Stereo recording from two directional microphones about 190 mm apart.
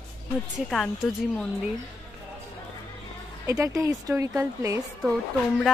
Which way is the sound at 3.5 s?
20° right (ahead or behind).